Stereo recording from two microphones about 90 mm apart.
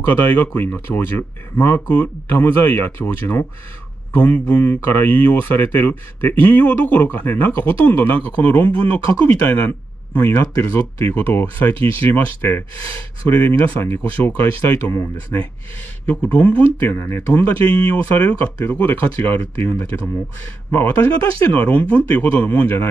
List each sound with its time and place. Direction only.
0.1 s speech: 20° left (ahead or behind)
16.1 s speech: 20° left (ahead or behind)